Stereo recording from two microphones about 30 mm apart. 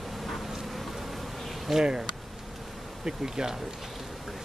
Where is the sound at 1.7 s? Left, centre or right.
Centre.